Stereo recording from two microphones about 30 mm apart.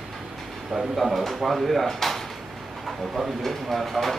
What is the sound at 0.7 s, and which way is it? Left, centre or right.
Speech, right.